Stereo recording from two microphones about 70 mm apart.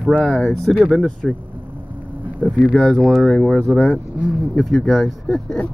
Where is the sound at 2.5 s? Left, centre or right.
Left.